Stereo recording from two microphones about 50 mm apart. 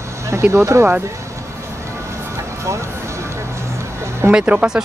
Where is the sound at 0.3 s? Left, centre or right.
Right.